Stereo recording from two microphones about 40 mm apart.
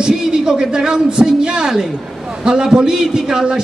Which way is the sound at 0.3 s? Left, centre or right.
Centre.